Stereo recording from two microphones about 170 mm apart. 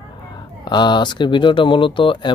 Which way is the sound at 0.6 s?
25° left (ahead or behind).